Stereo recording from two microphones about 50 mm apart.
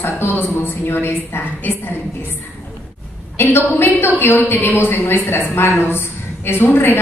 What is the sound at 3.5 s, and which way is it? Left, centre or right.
A woman's voice, left.